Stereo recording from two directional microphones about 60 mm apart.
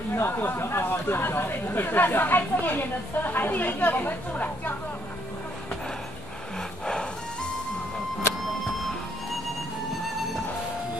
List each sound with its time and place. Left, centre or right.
0.1 s speech: left